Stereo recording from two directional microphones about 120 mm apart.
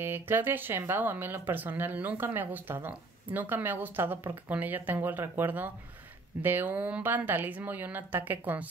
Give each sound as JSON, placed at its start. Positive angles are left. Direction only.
{"t": 0.0, "sound": "speech", "side_deg": -20}